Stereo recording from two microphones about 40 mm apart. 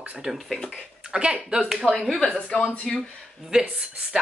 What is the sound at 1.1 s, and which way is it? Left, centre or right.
Speech, right.